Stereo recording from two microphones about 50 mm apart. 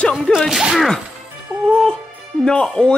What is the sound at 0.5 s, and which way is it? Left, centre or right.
Speech, centre.